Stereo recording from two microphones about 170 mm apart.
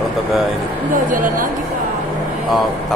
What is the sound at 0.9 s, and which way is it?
Speech, 55° right (ahead or behind).